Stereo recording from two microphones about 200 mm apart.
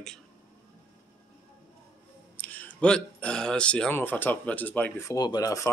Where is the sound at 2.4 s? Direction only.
5° left (ahead or behind).